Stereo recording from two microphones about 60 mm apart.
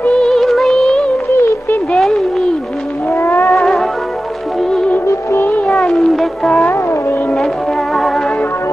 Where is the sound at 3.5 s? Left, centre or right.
Centre.